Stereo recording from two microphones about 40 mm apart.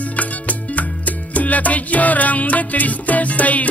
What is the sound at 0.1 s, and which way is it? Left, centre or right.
Music, left.